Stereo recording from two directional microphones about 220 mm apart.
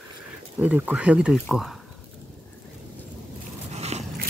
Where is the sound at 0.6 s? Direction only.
5° right (ahead or behind).